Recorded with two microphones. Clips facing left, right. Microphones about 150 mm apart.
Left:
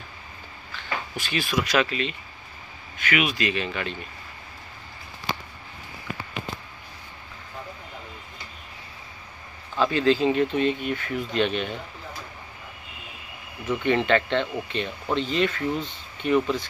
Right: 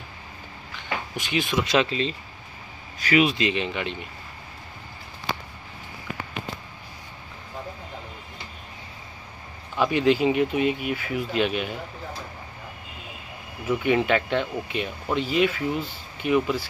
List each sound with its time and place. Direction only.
0.7 s speech: 20° right (ahead or behind)
9.8 s speech: 15° right (ahead or behind)
13.7 s speech: 10° right (ahead or behind)